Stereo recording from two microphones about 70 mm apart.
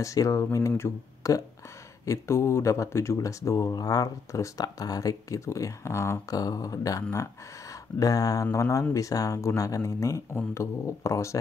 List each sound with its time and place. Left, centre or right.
0.0 s speech: left
3.7 s speech: left
6.3 s speech: left